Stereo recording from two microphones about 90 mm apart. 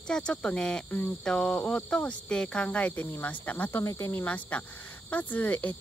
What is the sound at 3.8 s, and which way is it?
Cricket, 30° left (ahead or behind).